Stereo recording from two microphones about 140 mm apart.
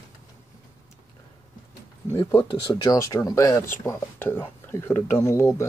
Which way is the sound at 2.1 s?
30° left (ahead or behind).